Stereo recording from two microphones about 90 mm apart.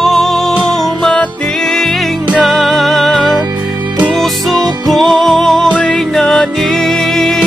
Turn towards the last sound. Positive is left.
turn(degrees=0)  # may be behind; listen again after turning